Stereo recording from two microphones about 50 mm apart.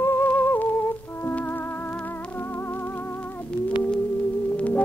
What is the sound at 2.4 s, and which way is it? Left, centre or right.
Music, left.